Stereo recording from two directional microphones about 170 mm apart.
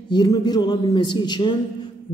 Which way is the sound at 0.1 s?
25° left (ahead or behind).